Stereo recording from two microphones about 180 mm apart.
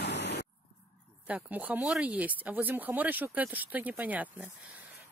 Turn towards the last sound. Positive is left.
turn(degrees=-10)  # may be behind; listen again after turning